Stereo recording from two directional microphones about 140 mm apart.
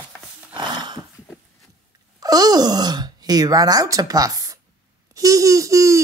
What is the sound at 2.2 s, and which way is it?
Speech, 25° right (ahead or behind).